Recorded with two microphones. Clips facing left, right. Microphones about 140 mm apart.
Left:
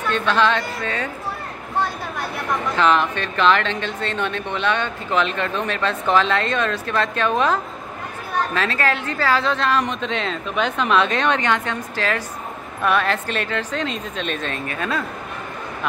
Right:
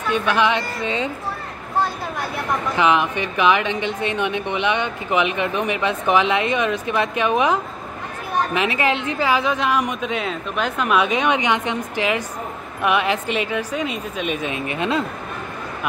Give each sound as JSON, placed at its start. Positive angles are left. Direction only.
{"t": 0.1, "sound": "speech", "side_deg": -10}
{"t": 2.7, "sound": "speech", "side_deg": -15}